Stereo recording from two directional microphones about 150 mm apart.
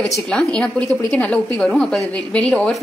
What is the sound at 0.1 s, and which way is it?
A woman's voice, 5° left (ahead or behind).